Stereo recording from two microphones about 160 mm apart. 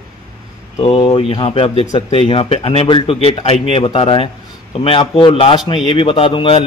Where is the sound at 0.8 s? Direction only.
30° left (ahead or behind).